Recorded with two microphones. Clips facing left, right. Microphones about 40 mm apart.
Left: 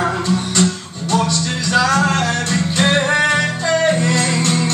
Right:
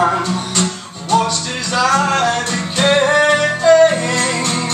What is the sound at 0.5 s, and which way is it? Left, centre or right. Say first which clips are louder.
Music: left 2 dB; right.